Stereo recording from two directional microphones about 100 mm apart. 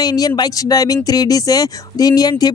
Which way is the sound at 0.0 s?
40° left (ahead or behind).